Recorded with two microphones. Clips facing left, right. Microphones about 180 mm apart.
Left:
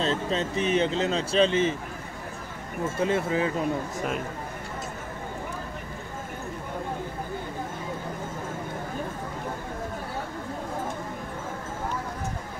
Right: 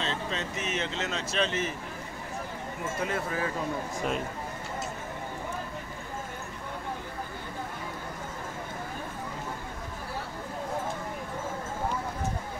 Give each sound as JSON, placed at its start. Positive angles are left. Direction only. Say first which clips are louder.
{"t": 0.0, "sound": "speech", "louder": "left 6 dB", "side_deg": 35}
{"t": 3.0, "sound": "speech", "louder": "left 7 dB", "side_deg": 25}